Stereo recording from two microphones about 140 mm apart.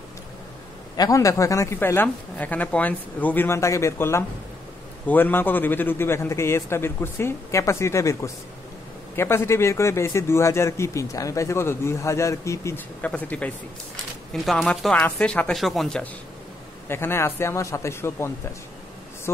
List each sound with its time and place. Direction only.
0.9 s a man's voice: 25° left (ahead or behind)
14.3 s speech: centre (ahead or behind)
16.8 s a man's voice: 15° left (ahead or behind)